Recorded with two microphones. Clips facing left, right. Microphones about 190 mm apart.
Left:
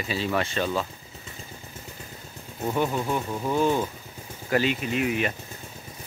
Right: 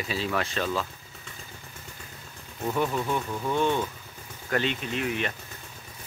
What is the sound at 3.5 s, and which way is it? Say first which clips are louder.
Speech: left 2 dB; 5° left (ahead or behind).